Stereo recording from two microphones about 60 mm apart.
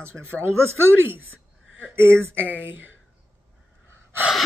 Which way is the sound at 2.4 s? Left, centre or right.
Right.